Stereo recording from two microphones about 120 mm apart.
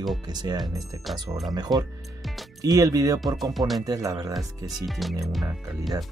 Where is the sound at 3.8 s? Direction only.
30° right (ahead or behind).